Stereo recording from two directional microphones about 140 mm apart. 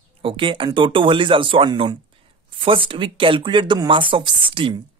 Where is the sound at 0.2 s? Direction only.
40° right (ahead or behind).